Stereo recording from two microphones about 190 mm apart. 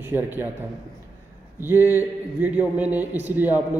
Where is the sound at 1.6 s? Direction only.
10° right (ahead or behind).